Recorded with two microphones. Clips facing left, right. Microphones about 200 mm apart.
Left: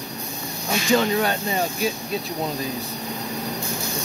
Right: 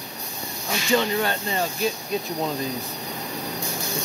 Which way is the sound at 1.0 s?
10° left (ahead or behind).